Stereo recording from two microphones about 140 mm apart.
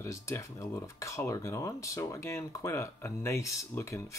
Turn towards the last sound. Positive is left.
turn(degrees=20)  # may be behind; listen again after turning